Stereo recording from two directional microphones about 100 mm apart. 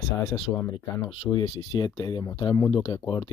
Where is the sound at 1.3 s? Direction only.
45° left (ahead or behind).